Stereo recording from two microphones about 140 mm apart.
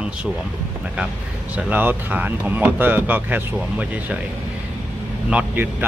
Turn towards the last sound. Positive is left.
turn(degrees=-10)  # may be behind; listen again after turning